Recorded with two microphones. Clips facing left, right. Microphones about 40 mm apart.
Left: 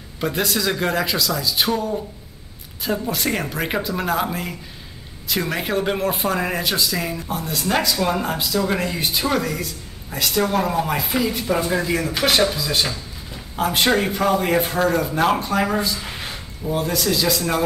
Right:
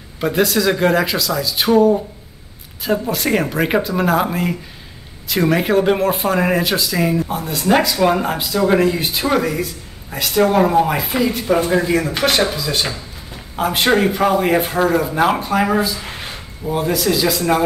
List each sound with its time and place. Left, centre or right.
0.2 s speech: centre
2.8 s a man's voice: centre
10.4 s speech: right
10.9 s speech: centre